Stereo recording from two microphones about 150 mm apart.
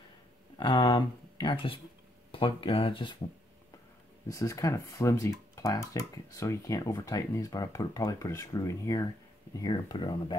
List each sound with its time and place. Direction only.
0.6 s speech: 30° left (ahead or behind)
4.3 s speech: 20° left (ahead or behind)